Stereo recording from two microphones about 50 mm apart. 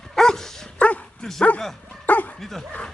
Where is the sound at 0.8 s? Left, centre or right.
Left.